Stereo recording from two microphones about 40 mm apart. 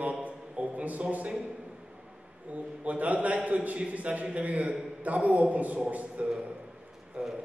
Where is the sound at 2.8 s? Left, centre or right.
Right.